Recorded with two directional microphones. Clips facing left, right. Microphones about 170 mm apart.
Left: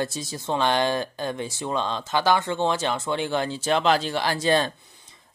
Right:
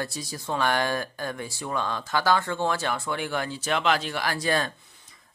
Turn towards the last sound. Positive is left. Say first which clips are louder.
# left 4 dB
turn(degrees=25)  # may be behind; listen again after turning